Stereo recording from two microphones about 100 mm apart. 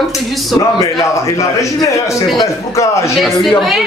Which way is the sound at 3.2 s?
Centre (ahead or behind).